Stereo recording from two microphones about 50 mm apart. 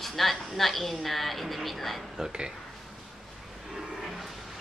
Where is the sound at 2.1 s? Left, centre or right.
Centre.